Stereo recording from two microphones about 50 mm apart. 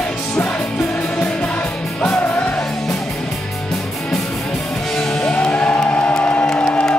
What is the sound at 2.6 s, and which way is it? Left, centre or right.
Music, centre.